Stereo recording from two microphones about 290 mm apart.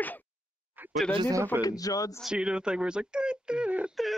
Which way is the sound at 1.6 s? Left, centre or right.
Centre.